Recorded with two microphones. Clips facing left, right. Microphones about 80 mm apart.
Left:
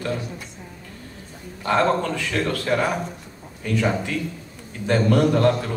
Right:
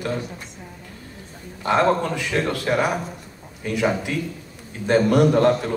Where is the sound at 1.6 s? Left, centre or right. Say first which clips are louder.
Right 1 dB; centre.